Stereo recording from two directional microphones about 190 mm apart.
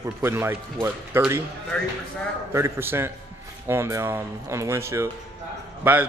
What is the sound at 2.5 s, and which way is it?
Speech, 15° right (ahead or behind).